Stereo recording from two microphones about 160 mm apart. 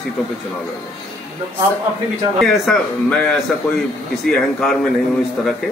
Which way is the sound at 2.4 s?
Centre (ahead or behind).